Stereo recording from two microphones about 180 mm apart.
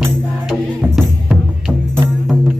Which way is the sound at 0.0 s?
Centre (ahead or behind).